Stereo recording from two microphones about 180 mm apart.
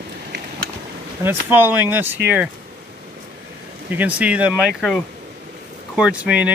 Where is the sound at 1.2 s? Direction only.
10° right (ahead or behind).